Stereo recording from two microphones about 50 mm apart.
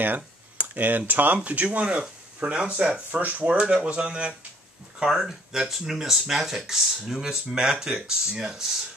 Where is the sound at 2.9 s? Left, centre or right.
Right.